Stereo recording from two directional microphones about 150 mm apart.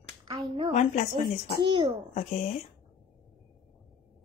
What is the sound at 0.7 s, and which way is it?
Speech, 55° left (ahead or behind).